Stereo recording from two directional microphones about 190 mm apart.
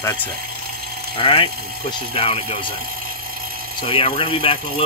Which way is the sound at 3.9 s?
30° left (ahead or behind).